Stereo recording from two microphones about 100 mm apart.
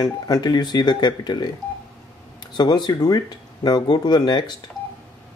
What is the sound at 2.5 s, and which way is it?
Speech, 45° left (ahead or behind).